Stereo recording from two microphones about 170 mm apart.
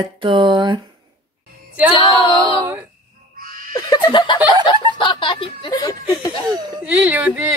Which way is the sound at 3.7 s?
25° left (ahead or behind).